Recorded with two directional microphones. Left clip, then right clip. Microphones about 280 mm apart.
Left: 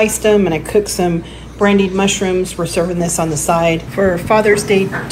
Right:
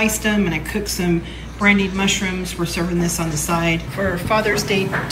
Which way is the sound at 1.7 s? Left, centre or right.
Centre.